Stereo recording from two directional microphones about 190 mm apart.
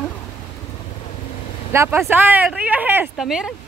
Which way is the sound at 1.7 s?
15° right (ahead or behind).